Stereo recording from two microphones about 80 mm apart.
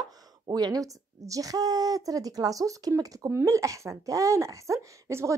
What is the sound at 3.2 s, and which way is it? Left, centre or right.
A woman's voice, right.